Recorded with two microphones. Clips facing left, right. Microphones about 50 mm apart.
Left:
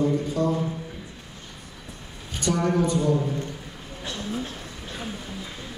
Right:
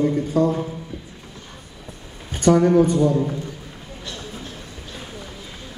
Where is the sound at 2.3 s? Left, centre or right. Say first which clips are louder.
Right 9 dB; right.